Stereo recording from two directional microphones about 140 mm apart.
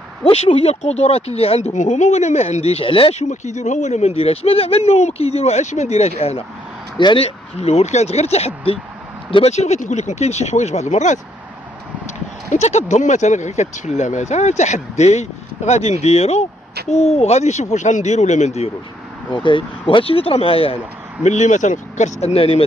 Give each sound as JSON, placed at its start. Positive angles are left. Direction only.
{"t": 0.2, "sound": "speech", "side_deg": 45}
{"t": 7.0, "sound": "speech", "side_deg": 35}
{"t": 7.2, "sound": "speech", "side_deg": 50}
{"t": 12.4, "sound": "speech", "side_deg": 55}
{"t": 19.3, "sound": "speech", "side_deg": 35}
{"t": 21.2, "sound": "speech", "side_deg": 60}